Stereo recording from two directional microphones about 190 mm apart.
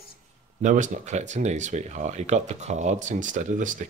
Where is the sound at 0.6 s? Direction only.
40° right (ahead or behind).